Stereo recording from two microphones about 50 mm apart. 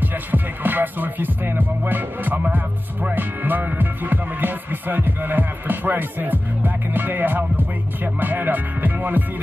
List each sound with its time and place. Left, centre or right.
0.0 s music: right